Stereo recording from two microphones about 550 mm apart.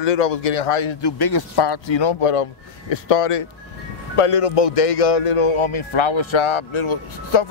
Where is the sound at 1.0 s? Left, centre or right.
Left.